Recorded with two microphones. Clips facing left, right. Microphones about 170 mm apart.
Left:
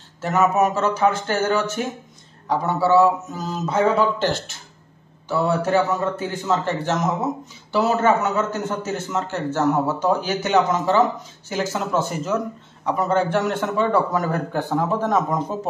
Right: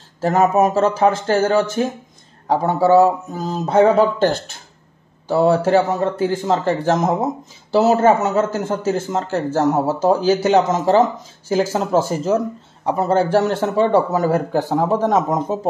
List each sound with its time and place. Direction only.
0.6 s a man's voice: 35° right (ahead or behind)
2.4 s a man's voice: 45° right (ahead or behind)
5.3 s a man's voice: 30° right (ahead or behind)
15.1 s speech: 20° right (ahead or behind)